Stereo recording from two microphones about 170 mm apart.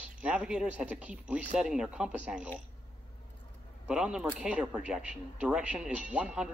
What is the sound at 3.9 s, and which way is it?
Speech, 5° right (ahead or behind).